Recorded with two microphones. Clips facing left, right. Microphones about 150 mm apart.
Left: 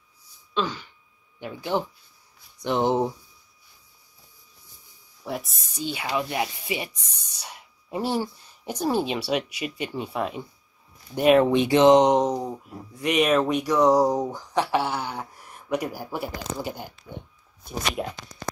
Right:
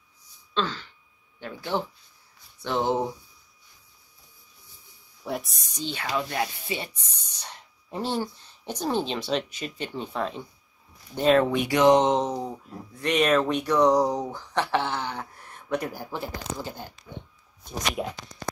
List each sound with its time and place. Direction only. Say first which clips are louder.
0.6 s speech: left 1 dB; 15° left (ahead or behind)
5.2 s speech: even; centre (ahead or behind)
11.5 s speech: left 3 dB; 25° left (ahead or behind)
18.0 s speech: right 1 dB; centre (ahead or behind)